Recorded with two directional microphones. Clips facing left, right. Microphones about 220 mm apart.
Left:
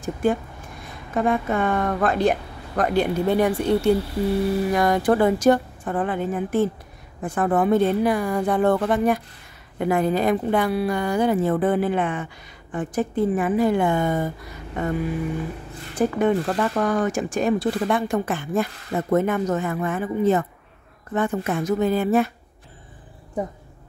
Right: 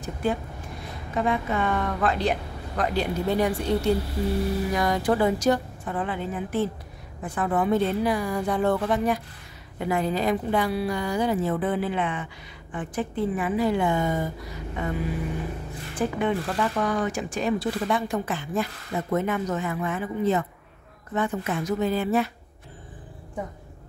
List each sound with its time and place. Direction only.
0.0 s speech: 50° left (ahead or behind)
16.0 s speech: 45° left (ahead or behind)